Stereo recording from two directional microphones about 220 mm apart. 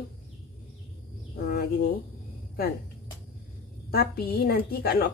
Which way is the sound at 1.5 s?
40° left (ahead or behind).